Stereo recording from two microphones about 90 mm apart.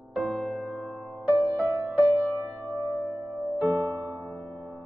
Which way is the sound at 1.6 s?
15° right (ahead or behind).